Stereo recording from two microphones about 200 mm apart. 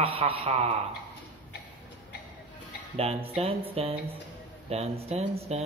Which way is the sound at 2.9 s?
30° right (ahead or behind).